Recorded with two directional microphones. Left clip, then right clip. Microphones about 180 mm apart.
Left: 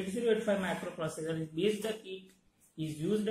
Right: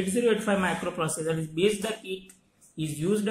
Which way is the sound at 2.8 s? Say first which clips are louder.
Right 6 dB; 35° right (ahead or behind).